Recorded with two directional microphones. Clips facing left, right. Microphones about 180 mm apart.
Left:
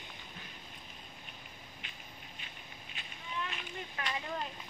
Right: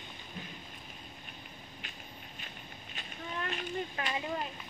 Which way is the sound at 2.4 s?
45° right (ahead or behind).